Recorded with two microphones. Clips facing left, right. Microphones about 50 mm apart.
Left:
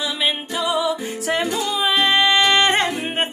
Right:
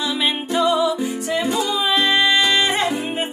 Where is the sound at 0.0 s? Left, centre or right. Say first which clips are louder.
Right 1 dB; centre.